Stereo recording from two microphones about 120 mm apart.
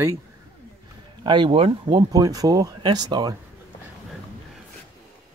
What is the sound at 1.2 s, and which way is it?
Speech, 40° right (ahead or behind).